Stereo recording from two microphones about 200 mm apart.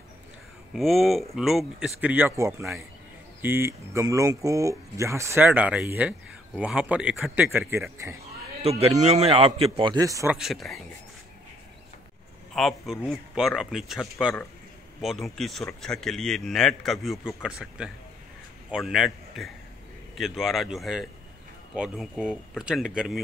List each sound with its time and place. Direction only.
0.7 s speech: centre (ahead or behind)
8.6 s a man's voice: 30° right (ahead or behind)
10.3 s speech: centre (ahead or behind)
12.5 s a man's voice: centre (ahead or behind)